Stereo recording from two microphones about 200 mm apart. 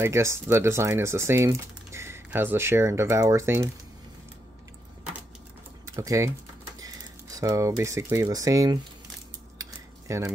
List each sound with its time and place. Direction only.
0.0 s speech: 15° right (ahead or behind)
5.9 s speech: 15° right (ahead or behind)
7.3 s speech: 15° right (ahead or behind)
9.6 s cutlery: 15° right (ahead or behind)